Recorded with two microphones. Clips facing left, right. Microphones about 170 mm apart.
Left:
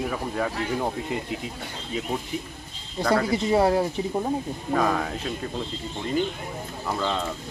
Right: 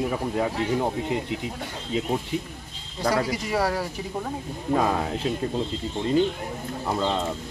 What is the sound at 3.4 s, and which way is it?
Speech, 25° left (ahead or behind).